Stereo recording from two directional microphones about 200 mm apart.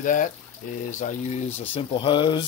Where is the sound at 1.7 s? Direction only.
25° left (ahead or behind).